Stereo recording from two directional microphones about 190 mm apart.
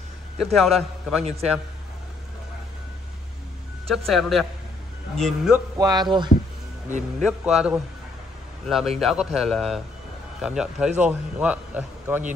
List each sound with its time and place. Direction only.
0.4 s a man's voice: centre (ahead or behind)
3.8 s a man's voice: centre (ahead or behind)
5.8 s speech: 20° right (ahead or behind)
7.2 s a man's voice: centre (ahead or behind)